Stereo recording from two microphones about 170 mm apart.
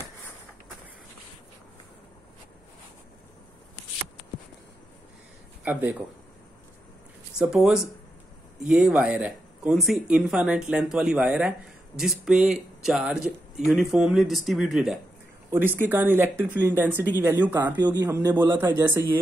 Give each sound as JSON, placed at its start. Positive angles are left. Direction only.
{"t": 5.6, "sound": "speech", "side_deg": -10}
{"t": 7.3, "sound": "speech", "side_deg": -5}
{"t": 17.7, "sound": "speech", "side_deg": -25}
{"t": 18.0, "sound": "speech", "side_deg": -15}